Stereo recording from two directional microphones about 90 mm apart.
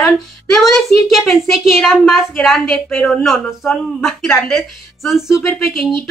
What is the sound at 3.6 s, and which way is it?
A woman's voice, 5° left (ahead or behind).